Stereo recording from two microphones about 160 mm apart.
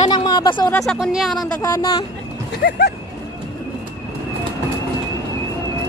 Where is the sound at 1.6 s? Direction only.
20° left (ahead or behind).